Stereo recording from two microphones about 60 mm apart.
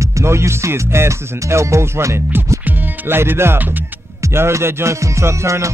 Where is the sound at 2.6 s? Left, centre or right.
Right.